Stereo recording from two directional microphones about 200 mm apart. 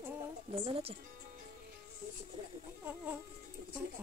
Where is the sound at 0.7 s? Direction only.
30° right (ahead or behind).